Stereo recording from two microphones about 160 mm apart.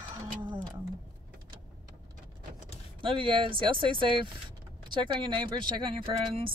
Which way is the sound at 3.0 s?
30° right (ahead or behind).